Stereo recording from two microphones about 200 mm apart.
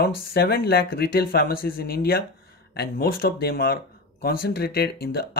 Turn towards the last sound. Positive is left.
turn(degrees=50)  # may be behind; listen again after turning